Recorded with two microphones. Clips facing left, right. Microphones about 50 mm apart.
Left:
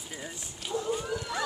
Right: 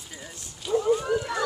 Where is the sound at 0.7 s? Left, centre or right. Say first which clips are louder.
Right 8 dB; right.